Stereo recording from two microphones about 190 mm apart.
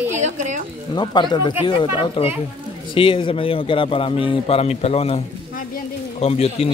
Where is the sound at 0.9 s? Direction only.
25° left (ahead or behind).